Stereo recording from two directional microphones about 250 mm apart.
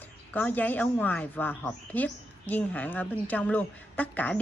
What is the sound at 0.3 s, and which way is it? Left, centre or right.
A woman's voice, centre.